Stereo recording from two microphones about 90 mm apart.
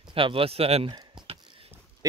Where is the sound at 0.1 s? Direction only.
85° right.